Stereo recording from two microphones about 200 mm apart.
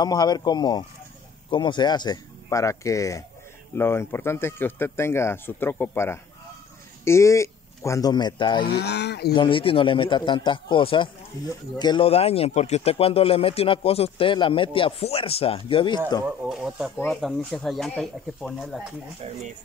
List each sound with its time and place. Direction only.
0.0 s speech: 20° left (ahead or behind)
8.6 s speech: 55° left (ahead or behind)
9.3 s speech: 25° left (ahead or behind)
16.3 s speech: 5° right (ahead or behind)
19.2 s speech: 30° right (ahead or behind)